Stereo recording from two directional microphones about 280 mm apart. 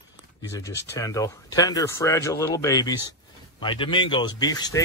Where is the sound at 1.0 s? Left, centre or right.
Centre.